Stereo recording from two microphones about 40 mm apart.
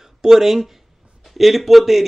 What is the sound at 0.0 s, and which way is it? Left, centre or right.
Speech, centre.